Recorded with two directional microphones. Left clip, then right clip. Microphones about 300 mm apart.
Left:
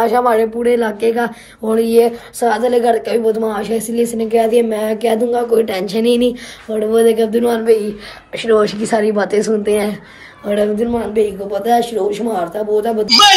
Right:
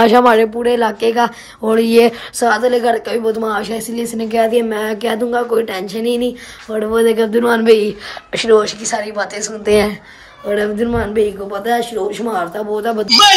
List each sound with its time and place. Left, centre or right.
0.0 s speech: right
2.4 s speech: centre
8.5 s speech: centre
10.5 s speech: centre